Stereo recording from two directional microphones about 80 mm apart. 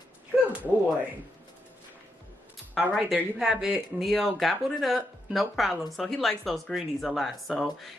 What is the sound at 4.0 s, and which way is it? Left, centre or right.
Speech, centre.